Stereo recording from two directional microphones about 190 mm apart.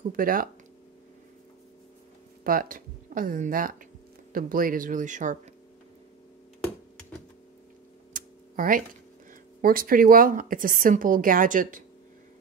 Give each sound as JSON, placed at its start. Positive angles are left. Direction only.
{"t": 0.1, "sound": "speech", "side_deg": -45}
{"t": 2.4, "sound": "speech", "side_deg": -50}
{"t": 8.1, "sound": "tick-tock", "side_deg": -45}
{"t": 9.3, "sound": "speech", "side_deg": -50}